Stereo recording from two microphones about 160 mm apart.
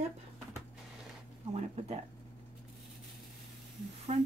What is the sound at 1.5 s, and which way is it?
Speech, 40° right (ahead or behind).